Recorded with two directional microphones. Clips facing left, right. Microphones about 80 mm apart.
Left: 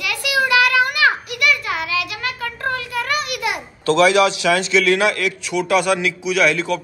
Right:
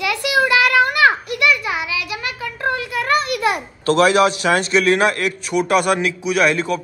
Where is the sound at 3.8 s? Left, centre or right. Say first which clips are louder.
Even; right.